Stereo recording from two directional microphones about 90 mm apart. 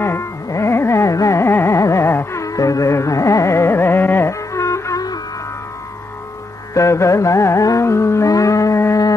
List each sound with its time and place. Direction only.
0.0 s carnatic music: 30° left (ahead or behind)
4.3 s music: 35° left (ahead or behind)
6.7 s music: 35° left (ahead or behind)